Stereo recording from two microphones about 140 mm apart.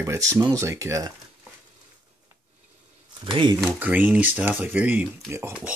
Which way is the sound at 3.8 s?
10° right (ahead or behind).